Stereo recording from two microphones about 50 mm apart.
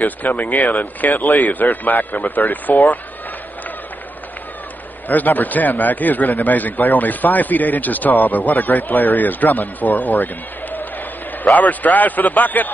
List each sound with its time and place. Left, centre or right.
0.4 s a man's voice: left
5.0 s a man's voice: left